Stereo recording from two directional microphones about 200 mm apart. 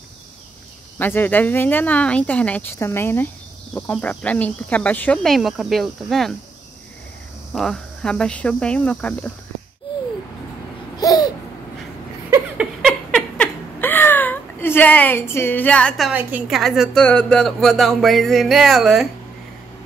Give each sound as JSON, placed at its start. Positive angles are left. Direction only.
{"t": 0.9, "sound": "a woman's voice", "side_deg": 10}
{"t": 7.5, "sound": "a woman's voice", "side_deg": 0}
{"t": 11.0, "sound": "babbling", "side_deg": 20}
{"t": 12.3, "sound": "a sound", "side_deg": -5}
{"t": 16.1, "sound": "a woman's voice", "side_deg": -10}